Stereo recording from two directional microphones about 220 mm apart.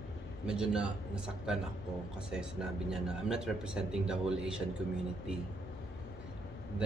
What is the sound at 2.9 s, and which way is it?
A man's voice, 5° right (ahead or behind).